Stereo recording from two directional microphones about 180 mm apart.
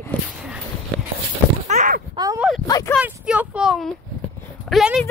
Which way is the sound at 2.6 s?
20° left (ahead or behind).